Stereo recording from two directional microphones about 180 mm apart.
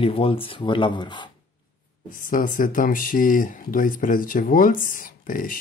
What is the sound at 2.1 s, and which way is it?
Speech, 50° left (ahead or behind).